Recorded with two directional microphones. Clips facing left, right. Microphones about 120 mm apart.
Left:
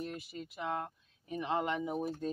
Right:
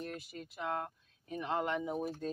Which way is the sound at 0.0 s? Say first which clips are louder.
Left 2 dB; 15° left (ahead or behind).